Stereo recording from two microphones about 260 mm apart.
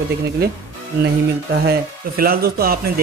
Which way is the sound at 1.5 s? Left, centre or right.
Right.